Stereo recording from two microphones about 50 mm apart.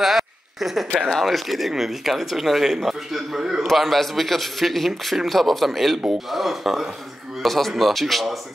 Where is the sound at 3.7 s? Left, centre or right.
Centre.